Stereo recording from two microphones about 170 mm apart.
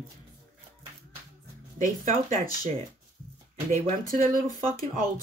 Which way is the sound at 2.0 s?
50° right (ahead or behind).